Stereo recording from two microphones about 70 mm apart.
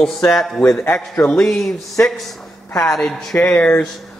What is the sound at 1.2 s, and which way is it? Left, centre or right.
A man's voice, centre.